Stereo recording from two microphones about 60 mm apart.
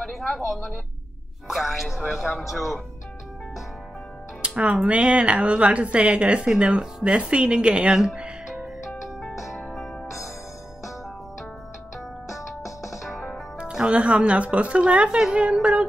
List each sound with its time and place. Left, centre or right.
0.0 s a woman's voice: centre
4.4 s music: centre
4.8 s a woman's voice: centre
9.4 s music: centre
12.3 s music: left
13.6 s a woman's voice: centre